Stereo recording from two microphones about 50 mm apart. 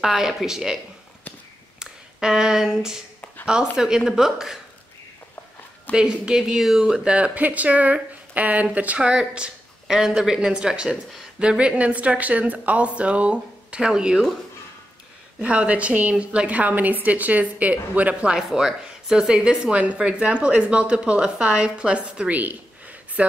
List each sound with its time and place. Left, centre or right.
0.0 s speech: centre
1.8 s speech: centre
5.9 s speech: centre
7.1 s a woman's voice: right
9.1 s a sound: centre
9.9 s speech: centre
15.4 s a woman's voice: right
18.3 s speech: centre
19.7 s speech: right
22.3 s a sound: right